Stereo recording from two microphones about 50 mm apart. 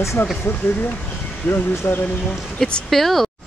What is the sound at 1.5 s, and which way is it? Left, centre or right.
Speech, left.